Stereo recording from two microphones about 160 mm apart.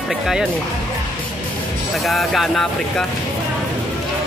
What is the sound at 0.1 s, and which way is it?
Speech, centre (ahead or behind).